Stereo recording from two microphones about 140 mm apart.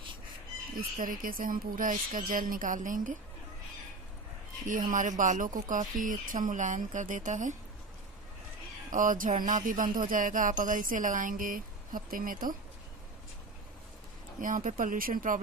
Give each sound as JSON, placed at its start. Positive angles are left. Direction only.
{"t": 0.7, "sound": "a woman's voice", "side_deg": -75}
{"t": 4.6, "sound": "speech", "side_deg": -70}
{"t": 8.9, "sound": "a woman's voice", "side_deg": -70}
{"t": 14.4, "sound": "a woman's voice", "side_deg": -70}